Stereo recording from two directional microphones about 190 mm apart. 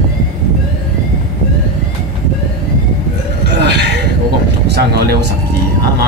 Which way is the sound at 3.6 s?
60° right (ahead or behind).